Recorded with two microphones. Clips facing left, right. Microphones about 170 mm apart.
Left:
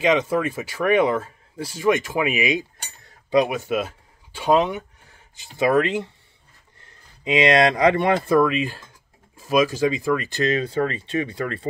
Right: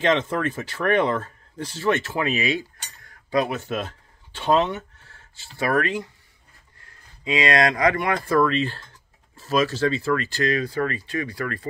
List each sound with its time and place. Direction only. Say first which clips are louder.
0.0 s speech: left 2 dB; 10° left (ahead or behind)
7.2 s speech: left 4 dB; 20° left (ahead or behind)